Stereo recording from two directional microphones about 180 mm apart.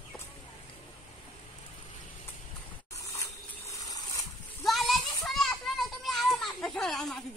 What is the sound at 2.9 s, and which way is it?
Water, 15° left (ahead or behind).